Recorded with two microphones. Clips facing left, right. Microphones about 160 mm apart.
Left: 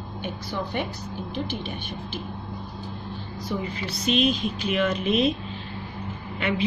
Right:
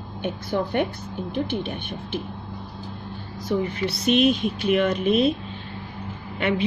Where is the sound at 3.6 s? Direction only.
65° right (ahead or behind).